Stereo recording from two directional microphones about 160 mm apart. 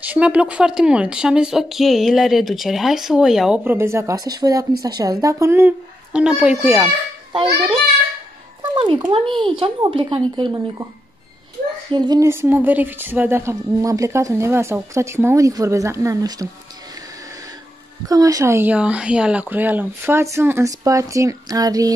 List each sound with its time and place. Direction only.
0.0 s a woman's voice: 10° right (ahead or behind)
8.7 s speech: 30° right (ahead or behind)
11.9 s a woman's voice: 20° right (ahead or behind)
18.0 s a woman's voice: 20° right (ahead or behind)